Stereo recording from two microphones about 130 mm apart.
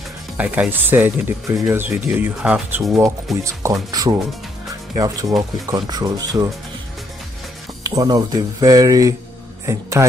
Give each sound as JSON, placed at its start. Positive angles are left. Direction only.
{"t": 0.4, "sound": "speech", "side_deg": -15}
{"t": 3.4, "sound": "speech", "side_deg": -25}
{"t": 7.8, "sound": "speech", "side_deg": -30}